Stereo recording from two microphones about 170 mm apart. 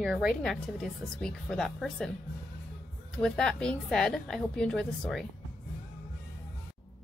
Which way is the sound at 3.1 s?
5° left (ahead or behind).